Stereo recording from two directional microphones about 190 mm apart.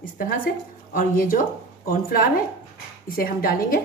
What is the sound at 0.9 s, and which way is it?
Speech, 45° left (ahead or behind).